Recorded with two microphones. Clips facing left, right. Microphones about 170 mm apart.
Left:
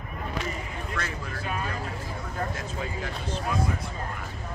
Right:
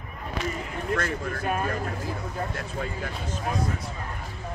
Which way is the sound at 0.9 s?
50° right (ahead or behind).